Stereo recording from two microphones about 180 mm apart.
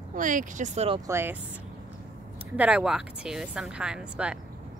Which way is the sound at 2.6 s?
5° right (ahead or behind).